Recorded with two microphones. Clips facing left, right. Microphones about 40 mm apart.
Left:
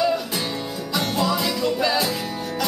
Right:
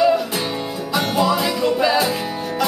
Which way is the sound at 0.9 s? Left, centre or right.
Centre.